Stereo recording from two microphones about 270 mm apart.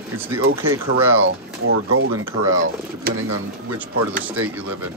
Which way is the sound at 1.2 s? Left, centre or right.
Right.